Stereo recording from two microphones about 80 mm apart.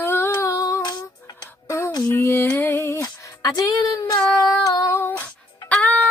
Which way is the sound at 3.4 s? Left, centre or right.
Left.